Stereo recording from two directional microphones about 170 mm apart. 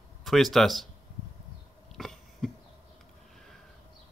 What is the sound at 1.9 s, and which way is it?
Cough, centre (ahead or behind).